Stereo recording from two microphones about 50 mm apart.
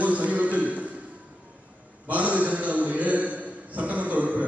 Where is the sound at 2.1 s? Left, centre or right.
Right.